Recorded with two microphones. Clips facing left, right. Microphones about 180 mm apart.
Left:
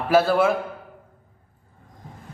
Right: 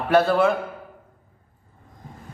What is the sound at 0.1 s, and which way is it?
Speech, centre (ahead or behind).